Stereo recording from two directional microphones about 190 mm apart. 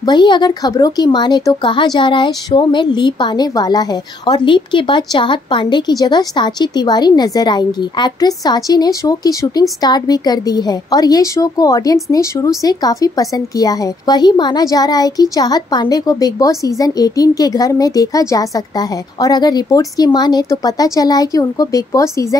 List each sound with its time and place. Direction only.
0.0 s a woman's voice: 25° left (ahead or behind)